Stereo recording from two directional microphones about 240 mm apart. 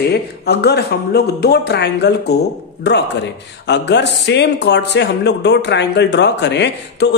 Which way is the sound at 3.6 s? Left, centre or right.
Left.